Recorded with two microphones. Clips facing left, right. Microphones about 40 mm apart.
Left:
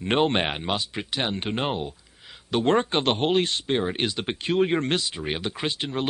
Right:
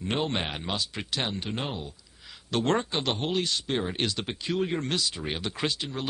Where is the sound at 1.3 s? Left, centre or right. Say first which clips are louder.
Left 6 dB; left.